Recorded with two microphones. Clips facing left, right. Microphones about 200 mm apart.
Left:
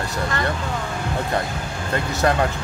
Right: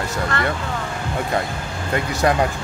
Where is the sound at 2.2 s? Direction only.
15° right (ahead or behind).